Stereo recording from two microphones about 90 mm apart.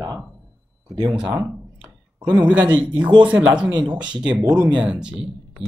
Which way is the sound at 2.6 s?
60° right (ahead or behind).